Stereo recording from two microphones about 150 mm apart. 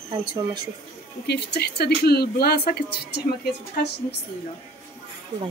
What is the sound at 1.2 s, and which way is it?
Speech, 90° left.